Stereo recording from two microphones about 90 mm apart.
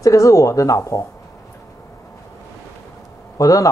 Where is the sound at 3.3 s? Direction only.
40° left (ahead or behind).